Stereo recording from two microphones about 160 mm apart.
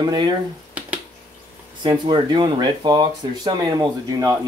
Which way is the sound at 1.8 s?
30° right (ahead or behind).